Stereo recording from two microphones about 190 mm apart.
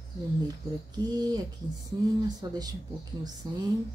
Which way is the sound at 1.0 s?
20° right (ahead or behind).